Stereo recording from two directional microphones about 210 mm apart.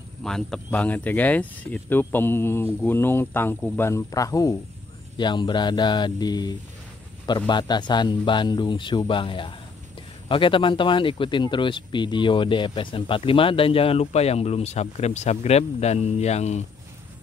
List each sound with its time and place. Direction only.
0.2 s speech: centre (ahead or behind); by 16.6 s 30° left (ahead or behind)